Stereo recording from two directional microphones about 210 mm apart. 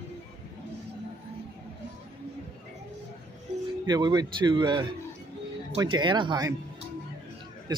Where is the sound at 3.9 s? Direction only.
20° right (ahead or behind).